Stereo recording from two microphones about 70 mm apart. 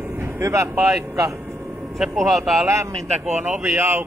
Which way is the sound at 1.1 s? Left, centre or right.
Right.